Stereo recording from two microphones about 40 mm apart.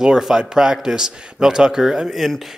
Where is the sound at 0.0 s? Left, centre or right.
Centre.